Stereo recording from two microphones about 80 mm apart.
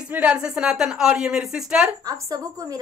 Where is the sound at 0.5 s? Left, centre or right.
Centre.